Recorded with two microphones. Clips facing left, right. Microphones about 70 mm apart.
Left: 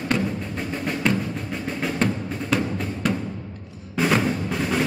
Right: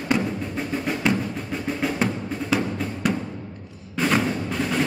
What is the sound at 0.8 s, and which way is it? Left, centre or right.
Music, centre.